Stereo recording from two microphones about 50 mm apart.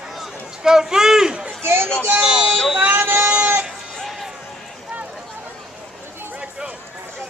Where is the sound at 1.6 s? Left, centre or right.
Right.